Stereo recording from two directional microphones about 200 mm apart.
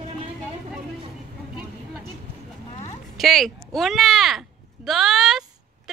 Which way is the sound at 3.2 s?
Centre (ahead or behind).